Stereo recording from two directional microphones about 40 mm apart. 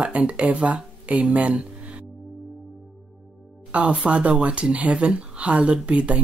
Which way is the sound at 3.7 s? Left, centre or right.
Right.